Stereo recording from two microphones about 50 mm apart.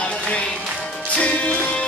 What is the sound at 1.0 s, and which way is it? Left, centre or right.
Music, left.